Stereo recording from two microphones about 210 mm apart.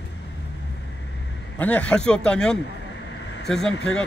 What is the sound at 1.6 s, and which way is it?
Speech, 5° left (ahead or behind).